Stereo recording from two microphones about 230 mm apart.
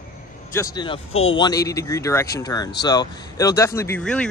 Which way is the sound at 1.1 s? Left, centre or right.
Left.